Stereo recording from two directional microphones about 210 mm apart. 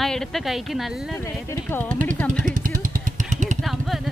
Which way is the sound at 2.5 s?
40° right (ahead or behind).